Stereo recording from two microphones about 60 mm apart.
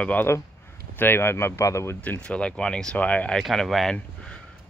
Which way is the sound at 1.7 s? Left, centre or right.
Left.